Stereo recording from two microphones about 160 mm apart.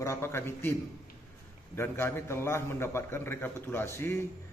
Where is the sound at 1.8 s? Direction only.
15° left (ahead or behind).